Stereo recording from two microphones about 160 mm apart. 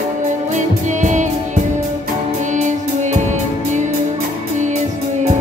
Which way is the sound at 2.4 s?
50° right (ahead or behind).